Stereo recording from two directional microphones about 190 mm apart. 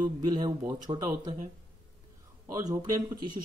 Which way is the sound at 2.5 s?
20° right (ahead or behind).